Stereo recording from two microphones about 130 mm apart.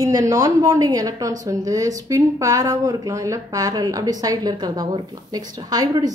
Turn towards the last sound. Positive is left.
turn(degrees=-30)  # may be behind; listen again after turning